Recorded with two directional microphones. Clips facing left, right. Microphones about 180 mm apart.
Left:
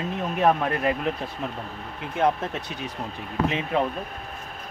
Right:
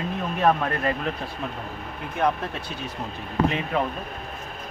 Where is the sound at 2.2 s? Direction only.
20° left (ahead or behind).